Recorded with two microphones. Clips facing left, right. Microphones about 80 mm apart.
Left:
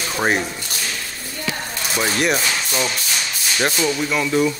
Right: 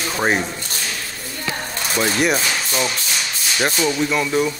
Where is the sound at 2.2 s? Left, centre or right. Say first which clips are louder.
Right 1 dB; centre.